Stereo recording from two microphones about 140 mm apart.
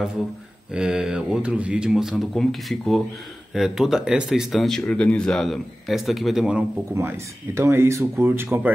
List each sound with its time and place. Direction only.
0.7 s speech: 5° right (ahead or behind)
6.9 s speech: 15° right (ahead or behind)